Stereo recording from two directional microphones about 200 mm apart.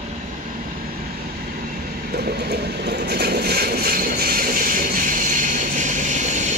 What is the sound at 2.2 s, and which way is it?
Vehicle, 55° right (ahead or behind).